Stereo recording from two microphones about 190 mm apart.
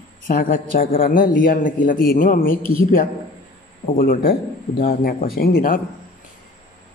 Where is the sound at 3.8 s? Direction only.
45° left (ahead or behind).